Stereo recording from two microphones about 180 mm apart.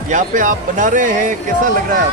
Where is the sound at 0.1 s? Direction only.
45° right (ahead or behind).